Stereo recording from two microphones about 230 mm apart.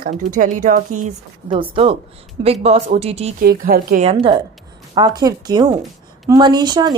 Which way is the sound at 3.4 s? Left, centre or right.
Right.